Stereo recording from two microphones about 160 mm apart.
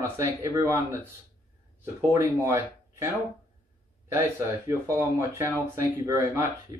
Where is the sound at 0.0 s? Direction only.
15° right (ahead or behind).